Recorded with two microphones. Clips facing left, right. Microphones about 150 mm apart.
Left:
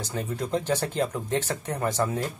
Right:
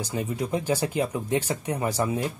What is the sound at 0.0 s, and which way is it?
Speech, 10° right (ahead or behind).